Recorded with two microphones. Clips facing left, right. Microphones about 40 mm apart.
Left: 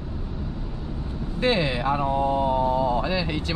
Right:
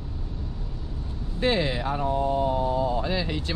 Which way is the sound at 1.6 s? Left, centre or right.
Left.